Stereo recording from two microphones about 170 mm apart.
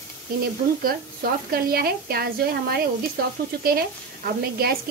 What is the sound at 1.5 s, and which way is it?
A woman's voice, 60° right (ahead or behind).